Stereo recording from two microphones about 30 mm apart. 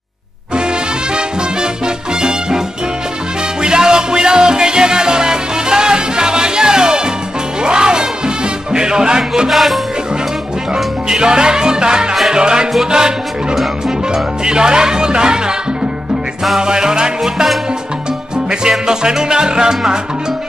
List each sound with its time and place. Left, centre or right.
3.6 s music: right
9.5 s music: centre
10.7 s music: right
12.3 s speech: right
13.8 s speech: right
16.5 s speech: right
18.5 s speech: right